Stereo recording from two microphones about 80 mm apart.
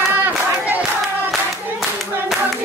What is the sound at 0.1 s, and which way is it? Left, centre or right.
Hands, right.